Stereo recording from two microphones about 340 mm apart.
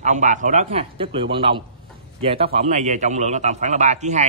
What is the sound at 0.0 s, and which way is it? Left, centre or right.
A man's voice, right.